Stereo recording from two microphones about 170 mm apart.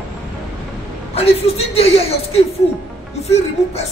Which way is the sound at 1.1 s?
35° left (ahead or behind).